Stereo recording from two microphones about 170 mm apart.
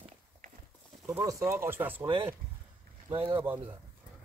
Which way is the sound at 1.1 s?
15° right (ahead or behind).